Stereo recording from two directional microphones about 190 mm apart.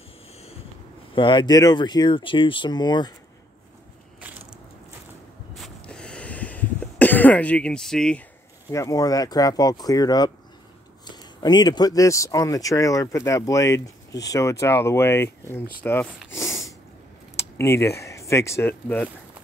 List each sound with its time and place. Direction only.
1.1 s speech: 25° left (ahead or behind)
4.2 s crushing: 5° right (ahead or behind)
5.6 s cough: 5° left (ahead or behind)
8.7 s speech: 20° left (ahead or behind)
16.3 s snort: 15° left (ahead or behind)
17.4 s speech: 15° left (ahead or behind)